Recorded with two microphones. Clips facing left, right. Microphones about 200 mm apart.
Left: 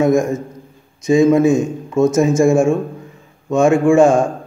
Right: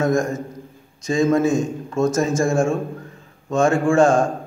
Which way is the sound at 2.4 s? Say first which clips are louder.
Left 6 dB; 20° left (ahead or behind).